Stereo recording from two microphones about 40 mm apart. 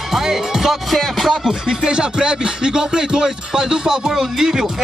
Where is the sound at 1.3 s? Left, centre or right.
Centre.